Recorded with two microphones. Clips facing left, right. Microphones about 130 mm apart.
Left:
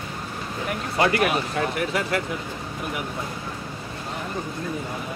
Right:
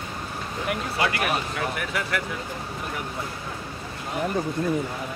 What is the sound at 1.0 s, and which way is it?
Speech, 35° left (ahead or behind).